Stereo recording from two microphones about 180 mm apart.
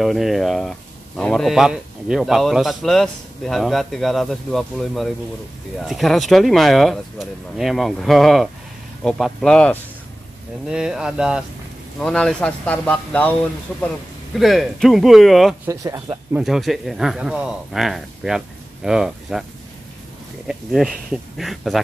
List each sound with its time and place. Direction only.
0.0 s speech: centre (ahead or behind)
15.6 s speech: 15° right (ahead or behind)
16.3 s speech: centre (ahead or behind)
20.4 s speech: centre (ahead or behind)